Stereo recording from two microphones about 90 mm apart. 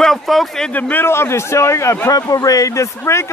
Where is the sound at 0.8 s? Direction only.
20° left (ahead or behind).